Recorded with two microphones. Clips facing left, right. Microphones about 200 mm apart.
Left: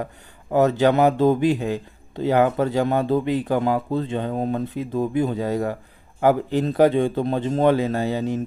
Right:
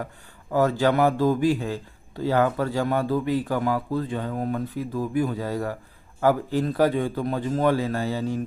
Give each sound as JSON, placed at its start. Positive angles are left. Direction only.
{"t": 0.0, "sound": "speech", "side_deg": 20}